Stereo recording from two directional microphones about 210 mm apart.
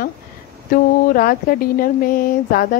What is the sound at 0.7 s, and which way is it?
A woman's voice, 40° left (ahead or behind).